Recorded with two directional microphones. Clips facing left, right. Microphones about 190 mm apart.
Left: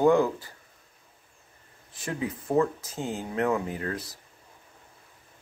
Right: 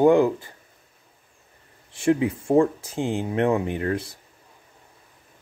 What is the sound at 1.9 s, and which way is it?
Speech, 30° right (ahead or behind).